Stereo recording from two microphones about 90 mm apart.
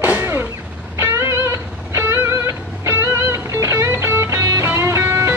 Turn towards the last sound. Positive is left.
turn(degrees=-30)  # may be behind; listen again after turning